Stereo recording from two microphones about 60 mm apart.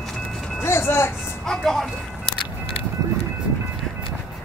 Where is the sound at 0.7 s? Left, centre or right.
Left.